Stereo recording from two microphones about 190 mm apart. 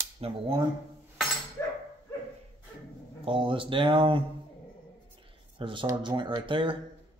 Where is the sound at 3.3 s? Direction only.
25° right (ahead or behind).